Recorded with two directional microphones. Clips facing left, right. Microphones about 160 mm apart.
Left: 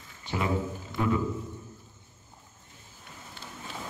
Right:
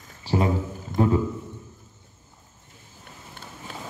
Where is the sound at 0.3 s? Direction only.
35° right (ahead or behind).